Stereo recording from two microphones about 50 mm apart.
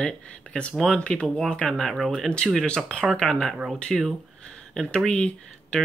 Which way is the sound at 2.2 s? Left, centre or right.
Centre.